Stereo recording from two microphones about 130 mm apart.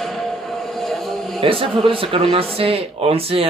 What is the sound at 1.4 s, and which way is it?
Speech, 45° right (ahead or behind).